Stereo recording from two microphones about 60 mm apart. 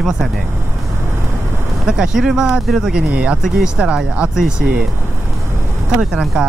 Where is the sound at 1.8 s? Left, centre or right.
Centre.